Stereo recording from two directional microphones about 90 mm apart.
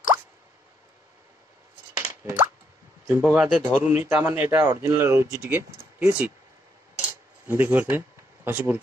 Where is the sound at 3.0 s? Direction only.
25° right (ahead or behind).